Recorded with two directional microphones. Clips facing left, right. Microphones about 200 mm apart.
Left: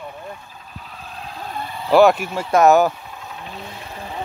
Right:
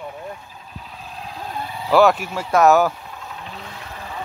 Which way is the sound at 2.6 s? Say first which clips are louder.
Left 1 dB; centre (ahead or behind).